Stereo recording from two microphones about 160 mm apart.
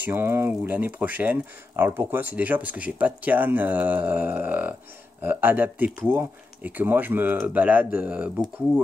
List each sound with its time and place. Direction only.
0.0 s speech: 15° right (ahead or behind)